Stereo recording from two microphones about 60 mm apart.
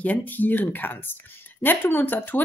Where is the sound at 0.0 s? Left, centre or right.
Left.